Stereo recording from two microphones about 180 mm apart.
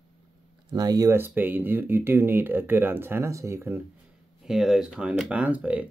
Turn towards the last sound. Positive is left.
turn(degrees=-5)  # may be behind; listen again after turning